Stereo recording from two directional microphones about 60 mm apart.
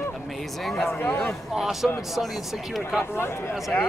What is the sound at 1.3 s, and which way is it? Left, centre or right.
Speech, centre.